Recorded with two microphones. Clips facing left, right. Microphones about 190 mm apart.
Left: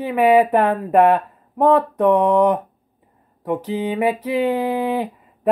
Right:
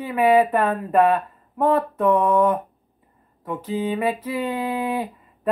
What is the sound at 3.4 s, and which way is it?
Speech, 15° left (ahead or behind).